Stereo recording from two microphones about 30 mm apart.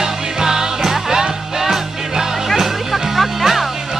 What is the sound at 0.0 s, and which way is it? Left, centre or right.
Music, right.